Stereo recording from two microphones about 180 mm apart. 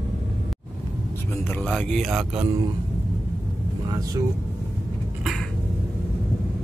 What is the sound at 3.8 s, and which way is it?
Vehicle, 25° right (ahead or behind).